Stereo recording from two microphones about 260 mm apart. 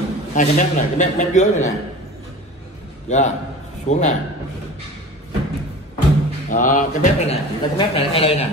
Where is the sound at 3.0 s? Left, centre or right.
Left.